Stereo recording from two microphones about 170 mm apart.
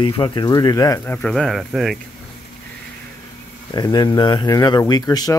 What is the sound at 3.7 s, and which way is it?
Speech, 25° left (ahead or behind).